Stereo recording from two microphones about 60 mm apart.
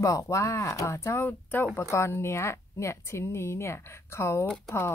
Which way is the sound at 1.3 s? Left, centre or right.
Left.